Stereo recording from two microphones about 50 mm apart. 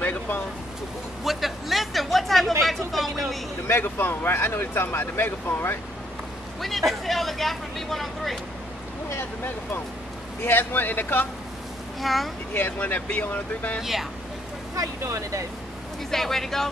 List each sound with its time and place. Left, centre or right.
0.0 s a sound: left
1.2 s a sound: centre
3.6 s speech: left
6.6 s speech: centre
9.1 s speech: left
12.0 s speech: centre
12.5 s speech: left
15.0 s speech: right
16.1 s speech: centre